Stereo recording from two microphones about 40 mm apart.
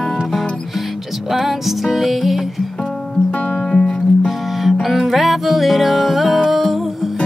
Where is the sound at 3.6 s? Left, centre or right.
Centre.